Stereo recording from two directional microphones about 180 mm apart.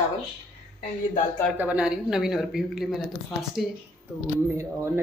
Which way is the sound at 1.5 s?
5° right (ahead or behind).